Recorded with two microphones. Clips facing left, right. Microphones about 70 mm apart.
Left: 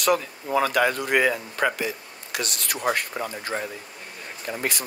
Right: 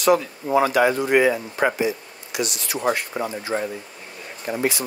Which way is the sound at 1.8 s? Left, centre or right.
Left.